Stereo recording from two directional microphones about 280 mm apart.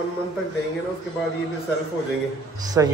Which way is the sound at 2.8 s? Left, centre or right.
Centre.